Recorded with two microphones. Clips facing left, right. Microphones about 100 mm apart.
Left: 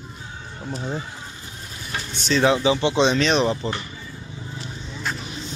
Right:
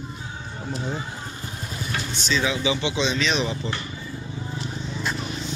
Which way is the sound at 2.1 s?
60° left (ahead or behind).